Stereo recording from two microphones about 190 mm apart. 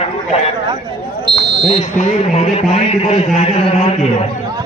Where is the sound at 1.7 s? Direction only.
35° left (ahead or behind).